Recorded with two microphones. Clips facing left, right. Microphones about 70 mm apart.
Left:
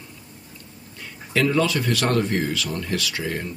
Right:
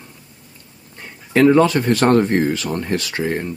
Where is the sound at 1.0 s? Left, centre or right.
Right.